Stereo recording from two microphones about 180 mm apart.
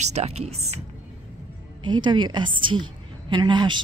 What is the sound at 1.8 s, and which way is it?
A woman's voice, 25° right (ahead or behind).